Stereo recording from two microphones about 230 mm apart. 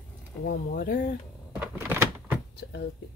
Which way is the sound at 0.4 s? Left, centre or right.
Left.